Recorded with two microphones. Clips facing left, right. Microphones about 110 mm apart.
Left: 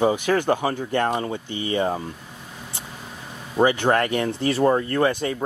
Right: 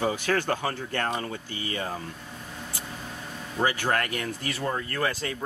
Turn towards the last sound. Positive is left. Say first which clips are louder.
# left 8 dB
turn(degrees=20)  # may be behind; listen again after turning